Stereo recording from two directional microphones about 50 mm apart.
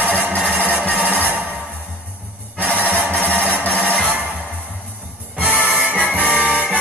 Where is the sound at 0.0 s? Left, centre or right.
Right.